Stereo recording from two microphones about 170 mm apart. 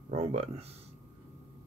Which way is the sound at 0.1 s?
40° right (ahead or behind).